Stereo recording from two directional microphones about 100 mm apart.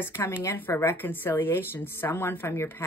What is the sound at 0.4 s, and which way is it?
Speech, 25° left (ahead or behind).